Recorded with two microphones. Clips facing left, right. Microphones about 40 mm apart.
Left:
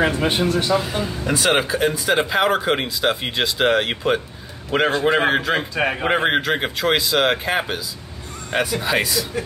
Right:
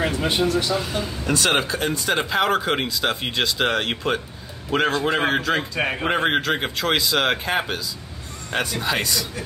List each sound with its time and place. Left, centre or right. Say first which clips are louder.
0.0 s speech: left 3 dB; left
0.7 s speech: left 3 dB; centre